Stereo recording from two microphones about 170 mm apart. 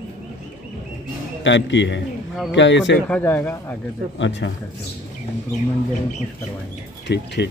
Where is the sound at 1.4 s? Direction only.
90° left.